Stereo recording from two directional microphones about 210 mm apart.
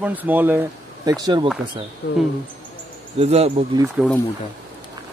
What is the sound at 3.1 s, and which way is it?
Speech, 30° right (ahead or behind).